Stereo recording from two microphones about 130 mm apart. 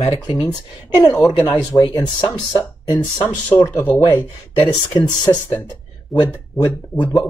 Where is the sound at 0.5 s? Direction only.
30° left (ahead or behind).